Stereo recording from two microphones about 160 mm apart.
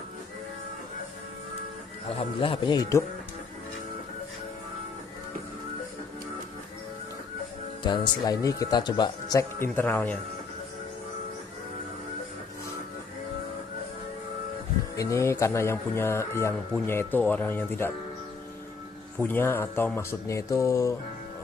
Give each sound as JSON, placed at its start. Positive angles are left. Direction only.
{"t": 2.0, "sound": "speech", "side_deg": 35}
{"t": 7.8, "sound": "speech", "side_deg": 30}
{"t": 15.0, "sound": "speech", "side_deg": 20}
{"t": 19.1, "sound": "speech", "side_deg": 10}